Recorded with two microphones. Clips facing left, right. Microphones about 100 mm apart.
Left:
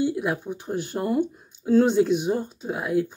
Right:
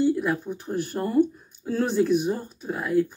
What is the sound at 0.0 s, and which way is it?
Speech, 10° left (ahead or behind).